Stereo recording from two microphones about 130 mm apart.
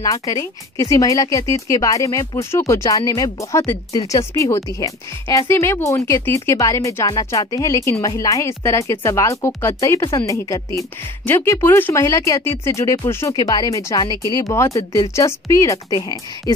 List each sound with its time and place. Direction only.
0.0 s speech: 30° left (ahead or behind)